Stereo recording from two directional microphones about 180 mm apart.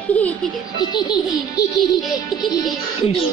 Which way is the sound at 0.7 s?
25° left (ahead or behind).